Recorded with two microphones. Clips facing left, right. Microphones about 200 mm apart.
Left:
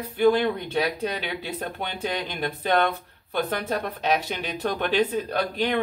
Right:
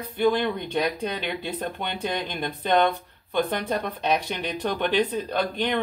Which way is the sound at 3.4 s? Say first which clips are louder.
Even; 5° left (ahead or behind).